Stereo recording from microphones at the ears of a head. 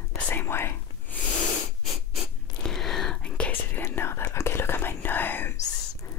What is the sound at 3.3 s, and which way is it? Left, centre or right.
Whispering, left.